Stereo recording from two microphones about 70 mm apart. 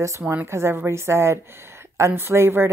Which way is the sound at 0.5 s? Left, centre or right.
Right.